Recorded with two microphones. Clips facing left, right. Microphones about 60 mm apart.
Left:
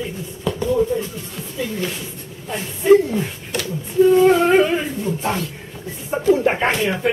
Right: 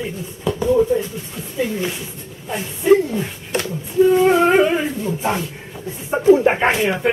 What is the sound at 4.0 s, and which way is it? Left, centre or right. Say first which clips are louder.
Speech: even; centre.